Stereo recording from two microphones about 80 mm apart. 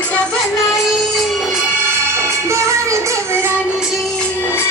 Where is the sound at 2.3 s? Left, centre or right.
Right.